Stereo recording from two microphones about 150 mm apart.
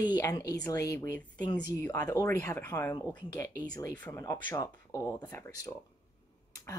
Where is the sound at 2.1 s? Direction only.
15° left (ahead or behind).